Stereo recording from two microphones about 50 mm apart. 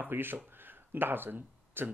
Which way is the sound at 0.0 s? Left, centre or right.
Right.